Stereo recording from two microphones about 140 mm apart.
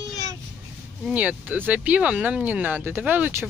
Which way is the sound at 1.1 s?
10° right (ahead or behind).